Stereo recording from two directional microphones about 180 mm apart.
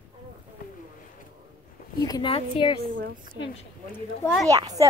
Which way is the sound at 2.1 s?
30° left (ahead or behind).